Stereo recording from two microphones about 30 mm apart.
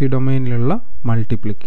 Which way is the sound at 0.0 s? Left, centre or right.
Left.